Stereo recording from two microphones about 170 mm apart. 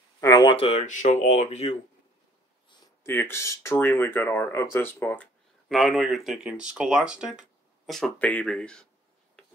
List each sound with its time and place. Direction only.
0.2 s speech: 20° left (ahead or behind); by 1.8 s 40° left (ahead or behind)
3.0 s speech: 15° left (ahead or behind)